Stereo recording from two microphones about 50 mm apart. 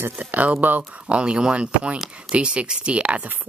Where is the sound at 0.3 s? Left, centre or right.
Right.